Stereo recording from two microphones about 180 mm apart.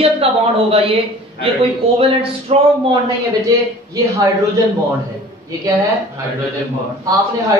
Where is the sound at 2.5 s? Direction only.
35° right (ahead or behind).